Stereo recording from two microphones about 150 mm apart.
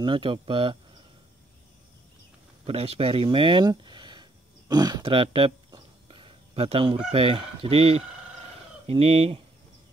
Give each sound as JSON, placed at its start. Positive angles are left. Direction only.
{"t": 0.0, "sound": "speech", "side_deg": -35}
{"t": 2.6, "sound": "a sound", "side_deg": -40}
{"t": 7.1, "sound": "speech", "side_deg": -35}